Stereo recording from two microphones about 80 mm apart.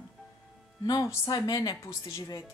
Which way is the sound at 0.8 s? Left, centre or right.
Left.